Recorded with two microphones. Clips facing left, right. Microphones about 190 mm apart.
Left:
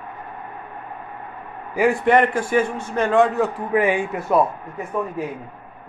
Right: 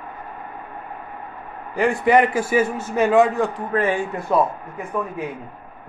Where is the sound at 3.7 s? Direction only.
15° left (ahead or behind).